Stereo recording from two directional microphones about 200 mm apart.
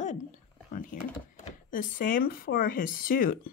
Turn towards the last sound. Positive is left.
turn(degrees=45)  # may be behind; listen again after turning